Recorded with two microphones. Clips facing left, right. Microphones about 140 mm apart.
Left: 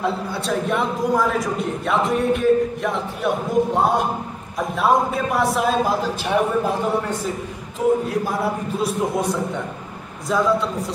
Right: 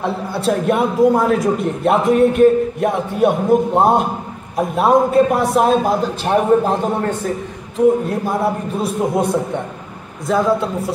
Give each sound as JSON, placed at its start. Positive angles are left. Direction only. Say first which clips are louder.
{"t": 0.5, "sound": "a man's voice", "louder": "right 6 dB", "side_deg": -55}
{"t": 8.1, "sound": "a man's voice", "louder": "right 4 dB", "side_deg": -55}